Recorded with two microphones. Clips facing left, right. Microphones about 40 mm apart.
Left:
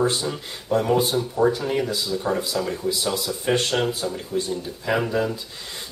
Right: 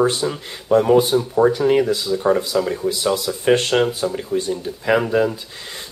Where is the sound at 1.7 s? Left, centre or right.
Right.